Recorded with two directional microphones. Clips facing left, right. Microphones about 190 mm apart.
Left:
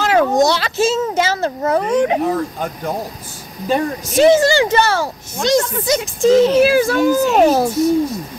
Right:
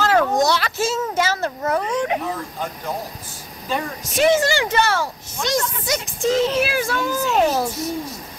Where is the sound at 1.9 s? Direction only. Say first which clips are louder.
Left 7 dB; 30° left (ahead or behind).